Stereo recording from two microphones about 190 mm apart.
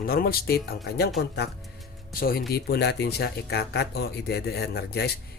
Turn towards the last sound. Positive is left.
turn(degrees=60)  # may be behind; listen again after turning